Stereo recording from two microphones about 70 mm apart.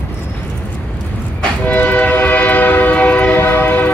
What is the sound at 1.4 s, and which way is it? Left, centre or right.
Train, left.